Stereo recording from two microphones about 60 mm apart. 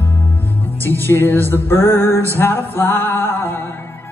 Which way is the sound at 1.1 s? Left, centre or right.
Left.